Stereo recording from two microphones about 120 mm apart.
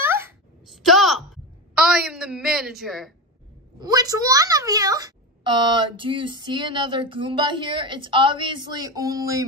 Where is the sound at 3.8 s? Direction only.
30° right (ahead or behind).